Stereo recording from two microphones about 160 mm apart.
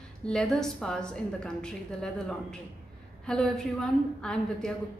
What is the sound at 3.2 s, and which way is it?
A woman's voice, 5° left (ahead or behind).